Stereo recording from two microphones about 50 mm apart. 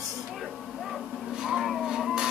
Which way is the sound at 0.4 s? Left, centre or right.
Centre.